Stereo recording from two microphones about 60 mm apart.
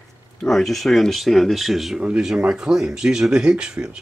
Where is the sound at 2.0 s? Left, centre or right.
Centre.